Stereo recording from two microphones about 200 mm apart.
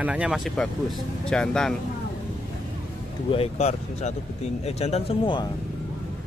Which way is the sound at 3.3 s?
30° left (ahead or behind).